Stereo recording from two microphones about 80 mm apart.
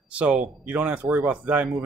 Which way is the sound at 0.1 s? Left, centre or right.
Centre.